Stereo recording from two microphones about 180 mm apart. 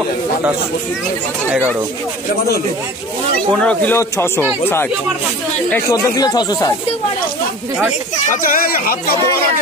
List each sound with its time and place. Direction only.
3.5 s speech: 5° left (ahead or behind)
5.9 s speech: 20° left (ahead or behind)
8.3 s speech: 50° left (ahead or behind)